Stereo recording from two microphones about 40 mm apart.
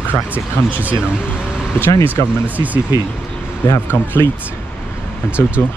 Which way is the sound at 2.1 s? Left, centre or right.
Right.